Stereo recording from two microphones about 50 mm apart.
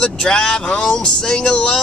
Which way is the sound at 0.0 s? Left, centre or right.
Centre.